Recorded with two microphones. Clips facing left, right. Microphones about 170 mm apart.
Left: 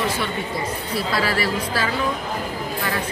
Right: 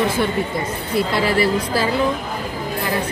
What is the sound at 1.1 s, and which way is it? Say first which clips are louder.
Speech: right 4 dB; 25° right (ahead or behind).